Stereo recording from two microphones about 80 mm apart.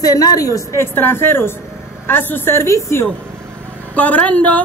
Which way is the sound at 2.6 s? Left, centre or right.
Left.